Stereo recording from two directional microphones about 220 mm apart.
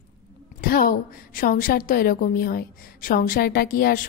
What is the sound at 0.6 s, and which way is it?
A woman's voice, 40° left (ahead or behind).